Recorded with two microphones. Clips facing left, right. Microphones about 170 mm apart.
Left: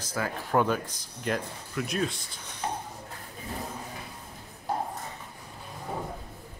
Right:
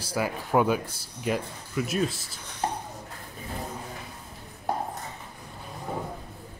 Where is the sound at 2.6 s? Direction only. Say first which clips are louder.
Right 3 dB; 35° right (ahead or behind).